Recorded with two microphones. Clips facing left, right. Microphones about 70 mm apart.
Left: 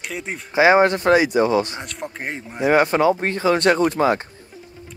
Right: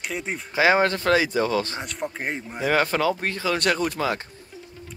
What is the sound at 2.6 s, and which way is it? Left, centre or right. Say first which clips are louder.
Speech: left 6 dB; left.